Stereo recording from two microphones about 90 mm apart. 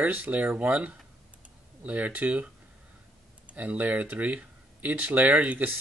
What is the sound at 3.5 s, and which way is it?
Speech, 15° right (ahead or behind).